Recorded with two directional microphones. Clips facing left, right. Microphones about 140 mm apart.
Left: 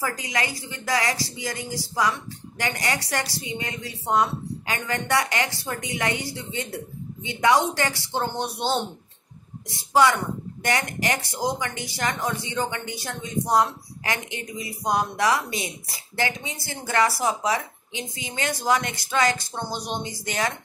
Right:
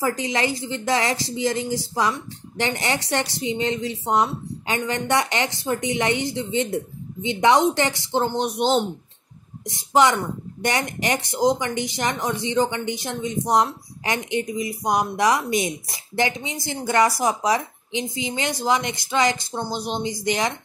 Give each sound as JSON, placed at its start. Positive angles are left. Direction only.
{"t": 0.0, "sound": "speech", "side_deg": -25}